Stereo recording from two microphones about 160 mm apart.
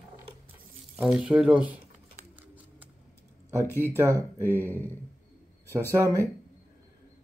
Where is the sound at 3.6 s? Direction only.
15° left (ahead or behind).